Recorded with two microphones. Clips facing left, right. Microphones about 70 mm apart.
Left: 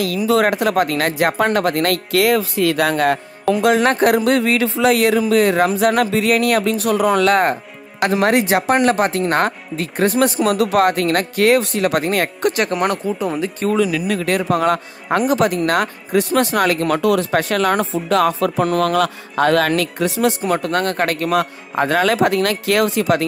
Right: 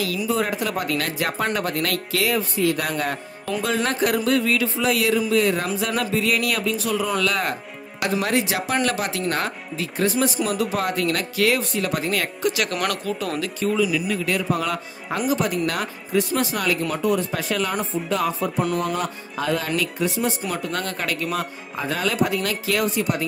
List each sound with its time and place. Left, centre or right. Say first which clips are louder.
0.3 s speech: left 10 dB; left
3.6 s speech: left 8 dB; left
12.0 s speech: left 5 dB; left
12.6 s speech: left 6 dB; left
13.6 s speech: left 3 dB; left
20.4 s speech: left 8 dB; left